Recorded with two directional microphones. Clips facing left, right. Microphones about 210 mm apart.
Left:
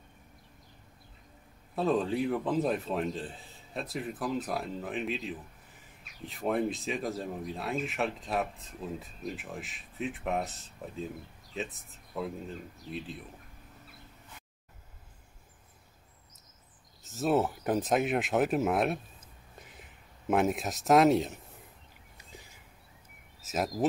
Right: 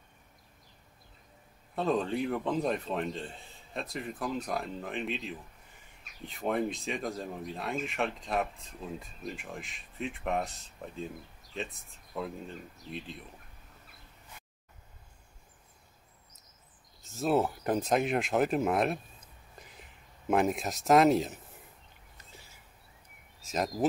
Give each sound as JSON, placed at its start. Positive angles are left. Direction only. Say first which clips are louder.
{"t": 1.8, "sound": "a man's voice", "louder": "left 1 dB", "side_deg": 0}
{"t": 11.5, "sound": "a man's voice", "louder": "left 1 dB", "side_deg": 5}
{"t": 17.0, "sound": "speech", "louder": "even", "side_deg": 0}
{"t": 22.1, "sound": "a sound", "louder": "left 4 dB", "side_deg": 15}
{"t": 23.4, "sound": "a man's voice", "louder": "even", "side_deg": 5}